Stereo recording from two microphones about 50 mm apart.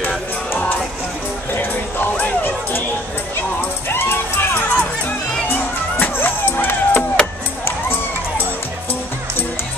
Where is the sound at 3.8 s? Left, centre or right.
Left.